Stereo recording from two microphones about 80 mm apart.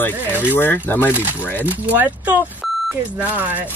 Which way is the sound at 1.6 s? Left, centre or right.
Right.